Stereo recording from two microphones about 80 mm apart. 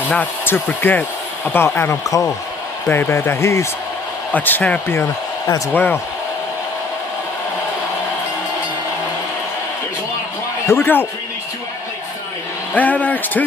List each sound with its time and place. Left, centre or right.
0.1 s speech: centre; by 3.6 s left
4.3 s speech: left
10.7 s speech: left
12.7 s speech: centre